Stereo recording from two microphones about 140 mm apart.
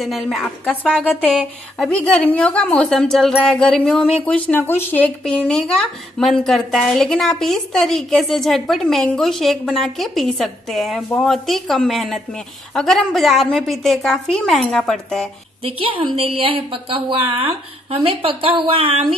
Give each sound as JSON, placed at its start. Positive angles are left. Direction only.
{"t": 0.0, "sound": "a woman's voice", "side_deg": 0}
{"t": 15.6, "sound": "a woman's voice", "side_deg": -40}